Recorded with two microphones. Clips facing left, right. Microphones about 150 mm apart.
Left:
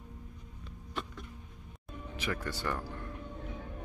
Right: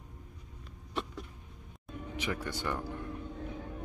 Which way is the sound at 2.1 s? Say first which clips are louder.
Even; 15° right (ahead or behind).